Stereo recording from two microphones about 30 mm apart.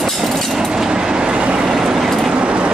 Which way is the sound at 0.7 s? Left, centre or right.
Right.